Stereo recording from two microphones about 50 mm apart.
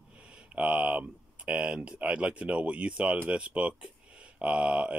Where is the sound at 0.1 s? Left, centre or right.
Right.